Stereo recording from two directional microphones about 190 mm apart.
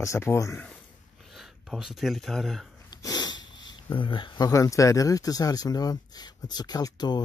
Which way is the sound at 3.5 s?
25° left (ahead or behind).